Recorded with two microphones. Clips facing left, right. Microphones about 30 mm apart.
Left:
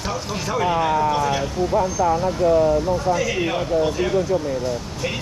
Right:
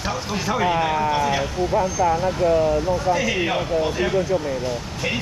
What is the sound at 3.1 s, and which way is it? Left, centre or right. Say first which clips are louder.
Speech: even; centre.